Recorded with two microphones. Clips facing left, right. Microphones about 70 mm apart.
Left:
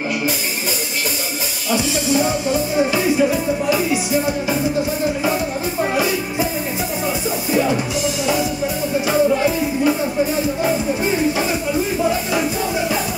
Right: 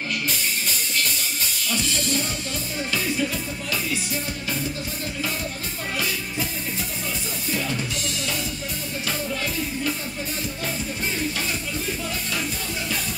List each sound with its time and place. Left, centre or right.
1.7 s music: centre
7.5 s music: left
9.1 s music: centre